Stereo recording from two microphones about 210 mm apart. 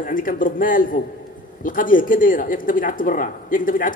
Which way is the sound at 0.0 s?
40° left (ahead or behind).